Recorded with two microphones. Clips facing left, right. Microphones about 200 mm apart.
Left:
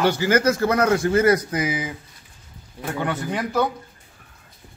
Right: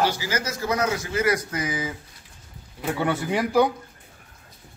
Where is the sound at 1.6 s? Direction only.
20° left (ahead or behind).